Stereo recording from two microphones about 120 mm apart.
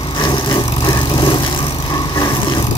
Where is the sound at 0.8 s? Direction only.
40° left (ahead or behind).